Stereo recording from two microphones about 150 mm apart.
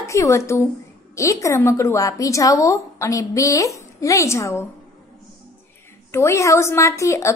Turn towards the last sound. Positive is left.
turn(degrees=20)  # may be behind; listen again after turning